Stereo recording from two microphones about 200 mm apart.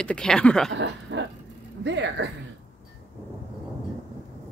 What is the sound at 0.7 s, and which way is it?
Speech, 65° right (ahead or behind).